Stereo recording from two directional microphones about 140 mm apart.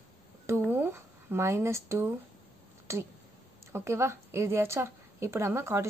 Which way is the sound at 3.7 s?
20° right (ahead or behind).